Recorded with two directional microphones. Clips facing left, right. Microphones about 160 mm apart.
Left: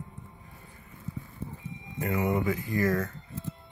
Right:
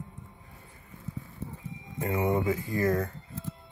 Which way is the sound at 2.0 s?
25° right (ahead or behind).